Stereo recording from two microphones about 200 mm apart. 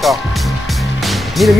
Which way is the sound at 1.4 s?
Centre (ahead or behind).